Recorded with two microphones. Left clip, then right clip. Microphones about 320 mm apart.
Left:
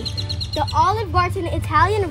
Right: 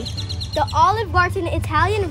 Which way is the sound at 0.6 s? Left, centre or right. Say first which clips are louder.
Right 2 dB; centre.